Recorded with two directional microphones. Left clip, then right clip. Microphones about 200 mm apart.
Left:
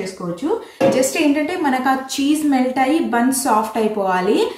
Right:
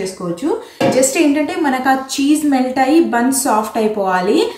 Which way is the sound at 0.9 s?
5° right (ahead or behind).